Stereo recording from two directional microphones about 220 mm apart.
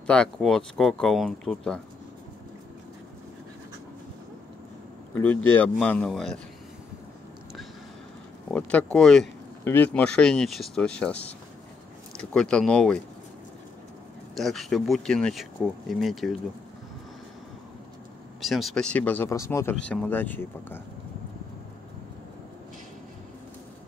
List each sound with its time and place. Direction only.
0.0 s speech: 5° left (ahead or behind)
5.1 s speech: 10° left (ahead or behind)
8.5 s speech: 5° left (ahead or behind)
14.3 s speech: centre (ahead or behind)
18.4 s speech: centre (ahead or behind)